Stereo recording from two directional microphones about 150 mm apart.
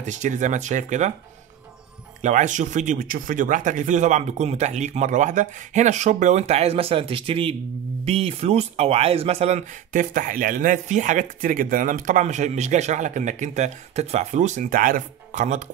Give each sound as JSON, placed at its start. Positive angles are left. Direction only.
{"t": 0.0, "sound": "speech", "side_deg": -55}
{"t": 2.2, "sound": "speech", "side_deg": -55}